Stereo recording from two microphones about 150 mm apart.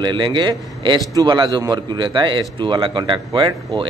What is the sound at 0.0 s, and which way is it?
A man's voice, 30° right (ahead or behind).